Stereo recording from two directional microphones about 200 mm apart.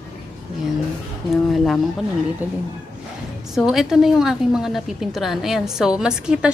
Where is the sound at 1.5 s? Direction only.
Centre (ahead or behind).